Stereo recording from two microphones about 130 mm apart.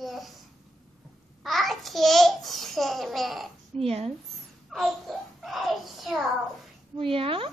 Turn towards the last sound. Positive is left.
turn(degrees=-45)  # may be behind; listen again after turning